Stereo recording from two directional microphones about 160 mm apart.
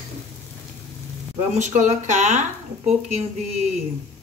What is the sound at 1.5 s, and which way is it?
Speech, 50° right (ahead or behind).